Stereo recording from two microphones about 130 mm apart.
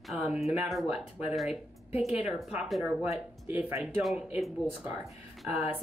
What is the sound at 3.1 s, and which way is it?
Speech, 15° right (ahead or behind).